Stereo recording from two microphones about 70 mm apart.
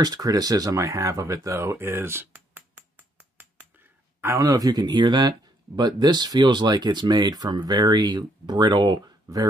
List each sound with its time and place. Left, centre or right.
0.0 s speech: right
1.7 s a sound: right
4.4 s speech: right